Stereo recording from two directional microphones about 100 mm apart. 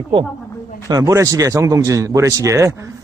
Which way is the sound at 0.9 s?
35° right (ahead or behind).